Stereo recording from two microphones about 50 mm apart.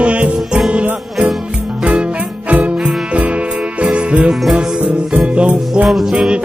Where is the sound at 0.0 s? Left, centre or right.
Right.